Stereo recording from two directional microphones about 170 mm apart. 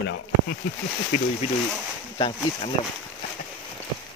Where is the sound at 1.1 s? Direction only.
45° left (ahead or behind).